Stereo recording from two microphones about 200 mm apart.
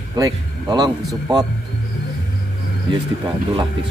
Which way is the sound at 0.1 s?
20° right (ahead or behind).